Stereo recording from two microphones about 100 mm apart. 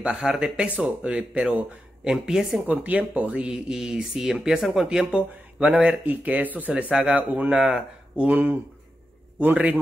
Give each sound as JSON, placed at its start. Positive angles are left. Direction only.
{"t": 0.0, "sound": "speech", "side_deg": -5}